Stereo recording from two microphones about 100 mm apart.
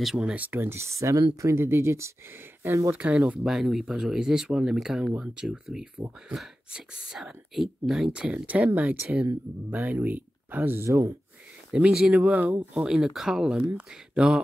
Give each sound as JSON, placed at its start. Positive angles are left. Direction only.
{"t": 0.0, "sound": "speech", "side_deg": -5}
{"t": 10.9, "sound": "speech", "side_deg": -30}
{"t": 11.7, "sound": "speech", "side_deg": -10}